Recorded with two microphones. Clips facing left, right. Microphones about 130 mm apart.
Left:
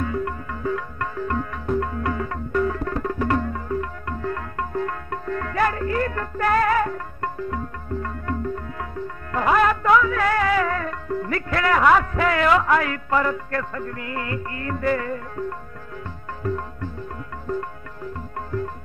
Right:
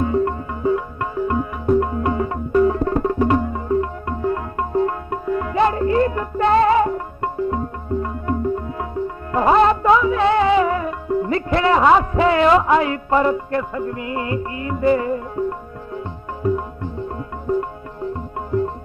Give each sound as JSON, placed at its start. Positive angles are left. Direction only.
{"t": 0.0, "sound": "music", "side_deg": -25}
{"t": 16.4, "sound": "music", "side_deg": -15}